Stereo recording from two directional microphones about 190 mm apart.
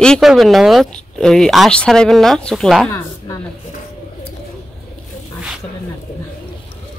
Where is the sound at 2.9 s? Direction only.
15° left (ahead or behind).